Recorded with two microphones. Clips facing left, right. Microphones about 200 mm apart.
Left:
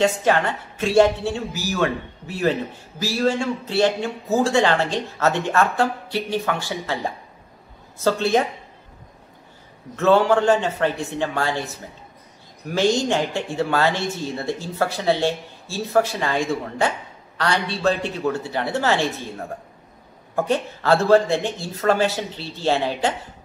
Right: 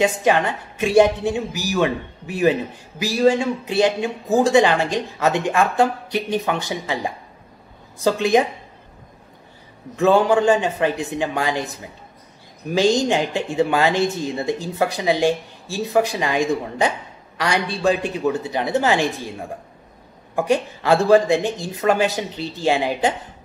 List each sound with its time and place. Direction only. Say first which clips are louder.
0.0 s speech: right 1 dB; 15° right (ahead or behind)
9.9 s speech: right 1 dB; 15° right (ahead or behind)